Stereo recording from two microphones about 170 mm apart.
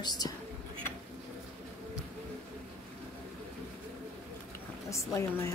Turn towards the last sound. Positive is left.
turn(degrees=15)  # may be behind; listen again after turning